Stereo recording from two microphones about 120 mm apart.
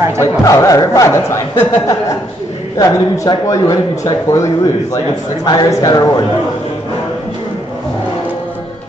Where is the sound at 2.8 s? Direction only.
30° left (ahead or behind).